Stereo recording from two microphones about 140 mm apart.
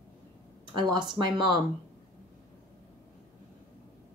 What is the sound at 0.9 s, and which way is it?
Speech, 35° right (ahead or behind).